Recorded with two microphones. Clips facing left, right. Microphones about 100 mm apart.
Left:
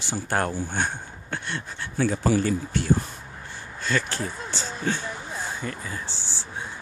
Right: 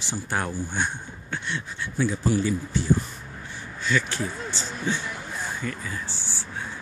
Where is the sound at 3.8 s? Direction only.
40° left (ahead or behind).